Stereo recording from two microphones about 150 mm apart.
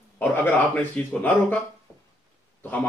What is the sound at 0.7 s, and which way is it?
Speech, 10° left (ahead or behind).